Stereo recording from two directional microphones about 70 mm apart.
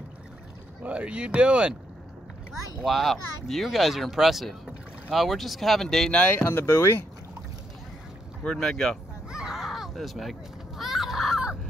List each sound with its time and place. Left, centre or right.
0.8 s speech: centre
2.8 s speech: centre
6.1 s speech: centre
6.4 s speech: left
8.5 s speech: centre
9.3 s a sound: centre
10.8 s fowl: centre